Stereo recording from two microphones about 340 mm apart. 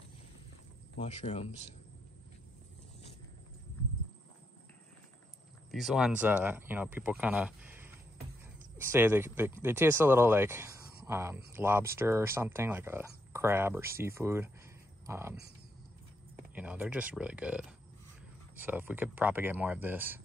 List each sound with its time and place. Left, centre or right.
0.9 s speech: centre
5.7 s speech: centre
16.5 s speech: centre